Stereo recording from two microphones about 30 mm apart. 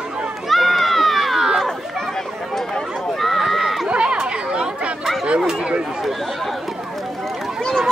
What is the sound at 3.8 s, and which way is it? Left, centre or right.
Chatter, right.